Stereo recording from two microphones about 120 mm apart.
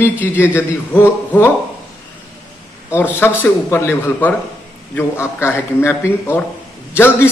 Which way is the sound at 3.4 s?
20° left (ahead or behind).